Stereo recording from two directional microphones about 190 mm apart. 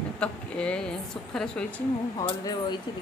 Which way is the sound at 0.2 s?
5° left (ahead or behind).